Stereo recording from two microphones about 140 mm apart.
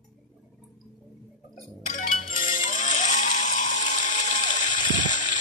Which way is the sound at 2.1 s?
85° left.